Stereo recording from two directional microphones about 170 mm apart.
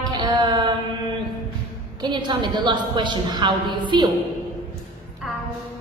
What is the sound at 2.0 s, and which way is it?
A woman's voice, 25° right (ahead or behind).